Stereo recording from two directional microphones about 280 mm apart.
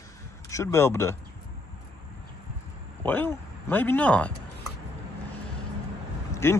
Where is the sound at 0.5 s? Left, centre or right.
Centre.